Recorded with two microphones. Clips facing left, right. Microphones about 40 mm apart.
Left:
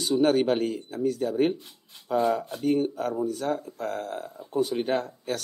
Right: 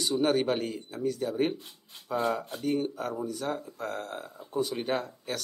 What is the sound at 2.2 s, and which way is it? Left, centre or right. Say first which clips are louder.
Speech: left 4 dB; right.